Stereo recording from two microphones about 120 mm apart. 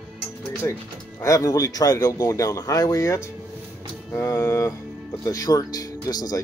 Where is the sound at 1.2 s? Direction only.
25° left (ahead or behind).